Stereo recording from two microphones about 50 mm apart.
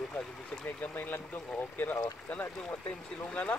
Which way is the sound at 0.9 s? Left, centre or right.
Left.